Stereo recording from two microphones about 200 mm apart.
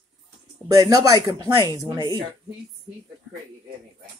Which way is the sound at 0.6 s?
20° right (ahead or behind).